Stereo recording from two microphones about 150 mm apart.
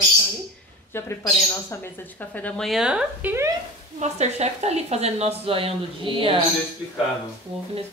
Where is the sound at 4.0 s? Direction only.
50° right (ahead or behind).